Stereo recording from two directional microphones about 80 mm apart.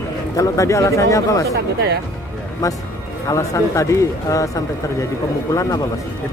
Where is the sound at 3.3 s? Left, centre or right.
Left.